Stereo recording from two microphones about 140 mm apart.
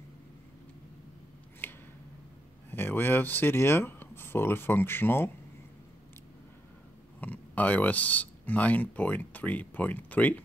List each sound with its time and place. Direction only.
1.6 s a sound: 15° left (ahead or behind)
2.7 s speech: 15° left (ahead or behind)
7.2 s speech: 10° left (ahead or behind)